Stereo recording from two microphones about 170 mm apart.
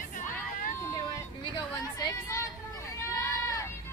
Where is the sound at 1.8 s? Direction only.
20° left (ahead or behind).